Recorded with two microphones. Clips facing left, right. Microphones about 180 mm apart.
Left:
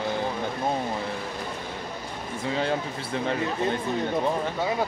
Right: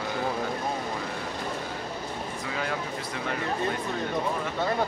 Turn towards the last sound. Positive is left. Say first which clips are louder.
# left 3 dB
turn(degrees=30)  # may be behind; listen again after turning